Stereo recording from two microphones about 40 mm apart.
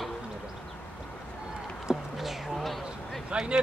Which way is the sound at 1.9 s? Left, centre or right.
Centre.